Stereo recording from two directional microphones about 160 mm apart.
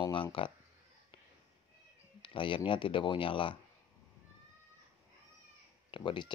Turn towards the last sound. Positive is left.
turn(degrees=30)  # may be behind; listen again after turning